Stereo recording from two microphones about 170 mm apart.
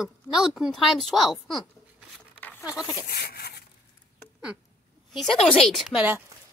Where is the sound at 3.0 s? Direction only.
70° left (ahead or behind).